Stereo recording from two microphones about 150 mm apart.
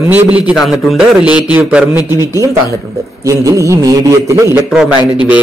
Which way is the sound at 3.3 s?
20° right (ahead or behind).